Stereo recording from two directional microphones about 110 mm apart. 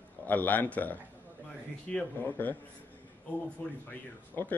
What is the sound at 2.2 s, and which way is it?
Speech, 15° left (ahead or behind).